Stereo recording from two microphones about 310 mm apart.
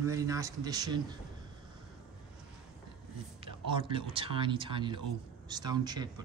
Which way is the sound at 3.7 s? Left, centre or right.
Centre.